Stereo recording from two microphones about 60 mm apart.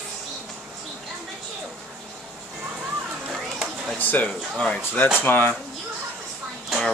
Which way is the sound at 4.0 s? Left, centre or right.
Left.